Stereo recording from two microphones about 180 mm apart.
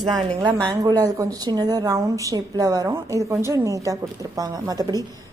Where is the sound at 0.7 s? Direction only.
20° right (ahead or behind).